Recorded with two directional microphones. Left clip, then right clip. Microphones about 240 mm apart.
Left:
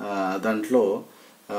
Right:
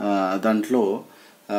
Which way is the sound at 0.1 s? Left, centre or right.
Right.